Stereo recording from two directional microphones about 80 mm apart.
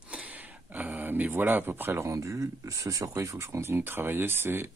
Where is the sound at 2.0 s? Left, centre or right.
Right.